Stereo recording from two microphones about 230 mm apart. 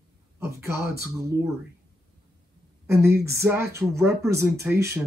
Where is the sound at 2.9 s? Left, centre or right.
Centre.